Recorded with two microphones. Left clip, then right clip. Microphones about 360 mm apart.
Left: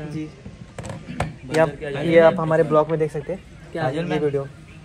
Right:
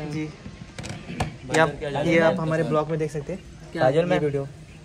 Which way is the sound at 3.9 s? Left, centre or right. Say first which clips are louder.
Right 5 dB; right.